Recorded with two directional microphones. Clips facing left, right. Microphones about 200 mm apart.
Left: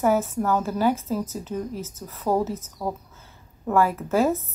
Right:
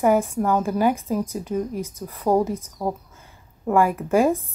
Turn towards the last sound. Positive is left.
turn(degrees=-15)  # may be behind; listen again after turning